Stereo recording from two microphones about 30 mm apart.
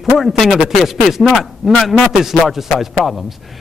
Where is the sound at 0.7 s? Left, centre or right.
Centre.